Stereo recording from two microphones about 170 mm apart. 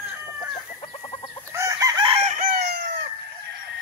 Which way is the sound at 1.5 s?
20° right (ahead or behind).